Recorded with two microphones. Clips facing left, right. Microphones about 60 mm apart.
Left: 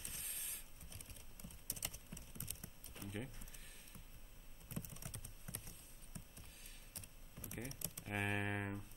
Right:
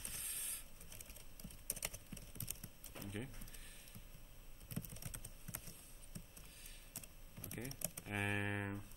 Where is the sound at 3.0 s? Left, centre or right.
Centre.